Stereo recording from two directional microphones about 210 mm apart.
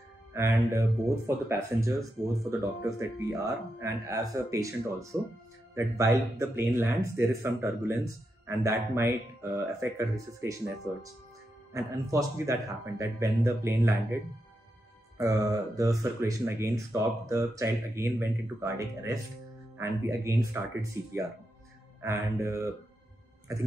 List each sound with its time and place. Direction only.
0.3 s speech: 15° right (ahead or behind)
15.1 s speech: 15° right (ahead or behind)